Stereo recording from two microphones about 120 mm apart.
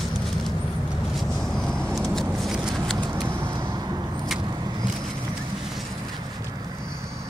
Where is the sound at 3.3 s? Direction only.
20° right (ahead or behind).